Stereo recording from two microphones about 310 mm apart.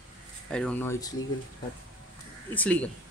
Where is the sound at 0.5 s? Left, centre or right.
Centre.